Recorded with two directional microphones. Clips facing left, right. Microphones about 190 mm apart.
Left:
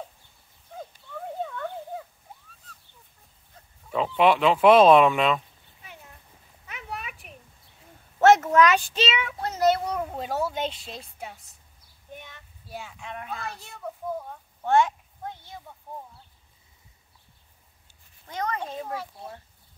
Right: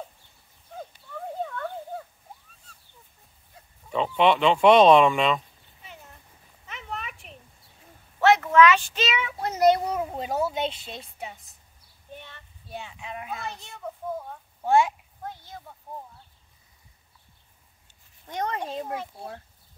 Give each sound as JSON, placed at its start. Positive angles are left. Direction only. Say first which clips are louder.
{"t": 3.9, "sound": "speech", "louder": "even", "side_deg": 5}
{"t": 6.7, "sound": "a sound", "louder": "right 1 dB", "side_deg": 10}
{"t": 8.2, "sound": "a sound", "louder": "left 1 dB", "side_deg": 45}
{"t": 9.2, "sound": "speech", "louder": "right 5 dB", "side_deg": -10}
{"t": 9.8, "sound": "a child's voice", "louder": "right 1 dB", "side_deg": -5}
{"t": 12.1, "sound": "child singing", "louder": "even", "side_deg": 15}
{"t": 12.7, "sound": "speech", "louder": "right 1 dB", "side_deg": 0}
{"t": 14.6, "sound": "speech", "louder": "even", "side_deg": -10}
{"t": 18.6, "sound": "speech", "louder": "right 1 dB", "side_deg": -15}